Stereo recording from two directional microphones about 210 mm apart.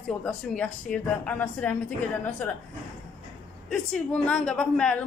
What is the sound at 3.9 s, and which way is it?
Speech, 5° left (ahead or behind).